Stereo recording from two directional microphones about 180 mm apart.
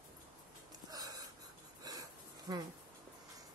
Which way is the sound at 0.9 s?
20° right (ahead or behind).